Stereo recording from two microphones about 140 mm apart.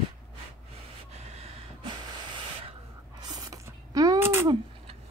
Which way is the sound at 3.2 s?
25° right (ahead or behind).